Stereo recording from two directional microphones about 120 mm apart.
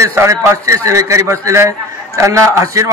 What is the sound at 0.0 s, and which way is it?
A man's voice, 25° right (ahead or behind).